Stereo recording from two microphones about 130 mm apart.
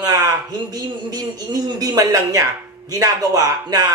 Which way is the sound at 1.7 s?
30° right (ahead or behind).